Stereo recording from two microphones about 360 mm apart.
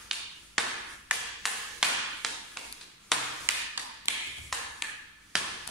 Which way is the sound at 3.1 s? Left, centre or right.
Centre.